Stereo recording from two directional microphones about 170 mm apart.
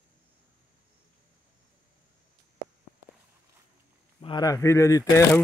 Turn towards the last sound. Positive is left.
turn(degrees=20)  # may be behind; listen again after turning